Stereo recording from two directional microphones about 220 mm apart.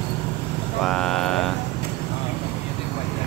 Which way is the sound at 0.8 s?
5° left (ahead or behind).